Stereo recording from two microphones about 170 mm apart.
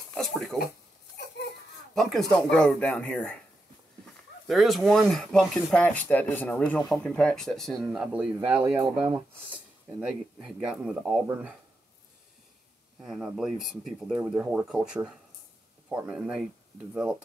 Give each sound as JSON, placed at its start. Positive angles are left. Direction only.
{"t": 0.1, "sound": "speech", "side_deg": 0}
{"t": 1.1, "sound": "a sound", "side_deg": 85}
{"t": 2.0, "sound": "speech", "side_deg": 0}
{"t": 4.5, "sound": "speech", "side_deg": 0}
{"t": 13.0, "sound": "speech", "side_deg": 0}